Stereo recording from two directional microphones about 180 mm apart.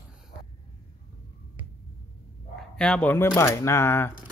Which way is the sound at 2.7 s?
5° left (ahead or behind).